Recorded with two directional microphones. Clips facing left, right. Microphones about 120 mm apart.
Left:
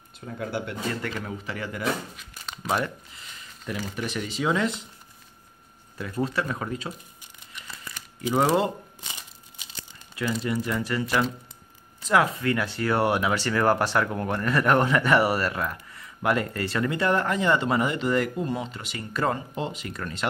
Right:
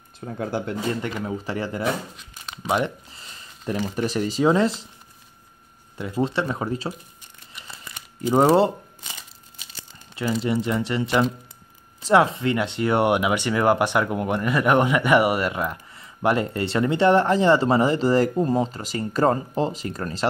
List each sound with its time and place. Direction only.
0.2 s speech: 35° right (ahead or behind)
1.0 s speech: 20° right (ahead or behind)
1.4 s speech: 35° right (ahead or behind)
2.1 s a sound: centre (ahead or behind)
3.1 s a sound: 35° right (ahead or behind)
3.8 s speech: 40° right (ahead or behind)
5.9 s speech: 20° right (ahead or behind)
8.4 s speech: 25° right (ahead or behind)
10.4 s speech: 25° right (ahead or behind)